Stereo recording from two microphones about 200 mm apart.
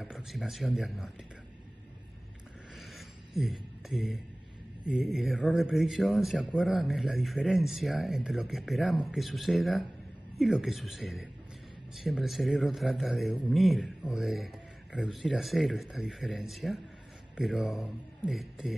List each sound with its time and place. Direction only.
0.0 s speech: centre (ahead or behind)
2.7 s a sound: centre (ahead or behind)
4.8 s speech: 5° right (ahead or behind)